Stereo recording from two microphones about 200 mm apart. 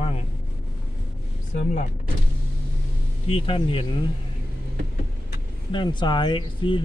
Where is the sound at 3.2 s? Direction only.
30° left (ahead or behind).